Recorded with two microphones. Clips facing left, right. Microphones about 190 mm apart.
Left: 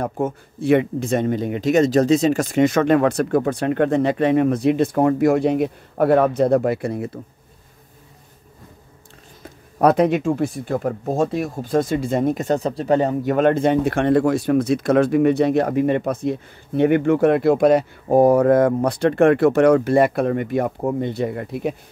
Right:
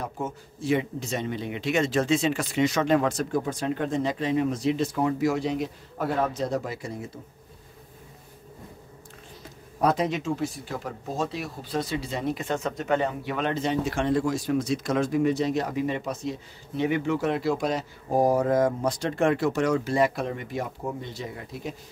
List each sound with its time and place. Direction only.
0.0 s speech: 55° left (ahead or behind)
9.4 s speech: 60° left (ahead or behind)